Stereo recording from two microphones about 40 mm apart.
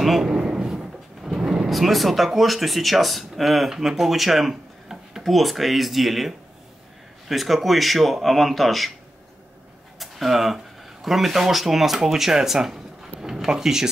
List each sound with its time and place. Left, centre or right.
0.2 s drawer open or close: centre
1.7 s speech: centre
4.0 s a sound: centre
5.3 s speech: centre
9.9 s speech: centre